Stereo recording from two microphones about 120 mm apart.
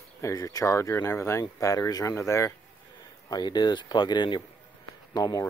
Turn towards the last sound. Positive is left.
turn(degrees=30)  # may be behind; listen again after turning